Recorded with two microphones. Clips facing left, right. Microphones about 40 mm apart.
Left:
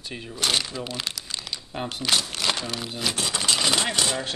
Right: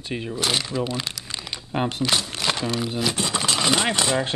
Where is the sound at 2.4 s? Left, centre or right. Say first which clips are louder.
Right 3 dB; centre.